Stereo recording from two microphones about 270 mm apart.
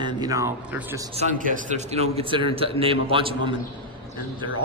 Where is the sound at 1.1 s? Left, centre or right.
Right.